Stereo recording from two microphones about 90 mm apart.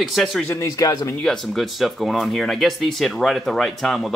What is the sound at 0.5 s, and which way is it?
Speech, 35° left (ahead or behind).